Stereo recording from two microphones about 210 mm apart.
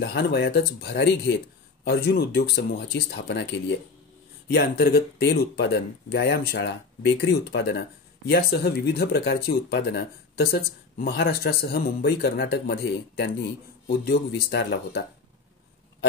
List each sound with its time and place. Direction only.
0.0 s speech: 50° left (ahead or behind)